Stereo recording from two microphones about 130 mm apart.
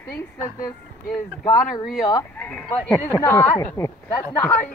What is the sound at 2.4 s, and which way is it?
Speech, 10° left (ahead or behind).